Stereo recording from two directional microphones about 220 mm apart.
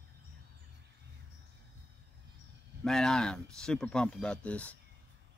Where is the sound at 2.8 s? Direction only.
Centre (ahead or behind).